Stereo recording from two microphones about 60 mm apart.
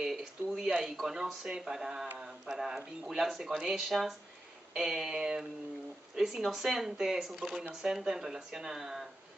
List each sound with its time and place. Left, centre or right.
0.0 s speech: centre